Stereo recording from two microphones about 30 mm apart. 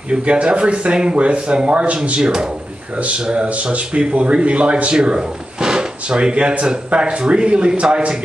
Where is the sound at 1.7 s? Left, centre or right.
Right.